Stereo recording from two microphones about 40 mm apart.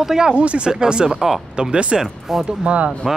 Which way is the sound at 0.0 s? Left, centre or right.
Centre.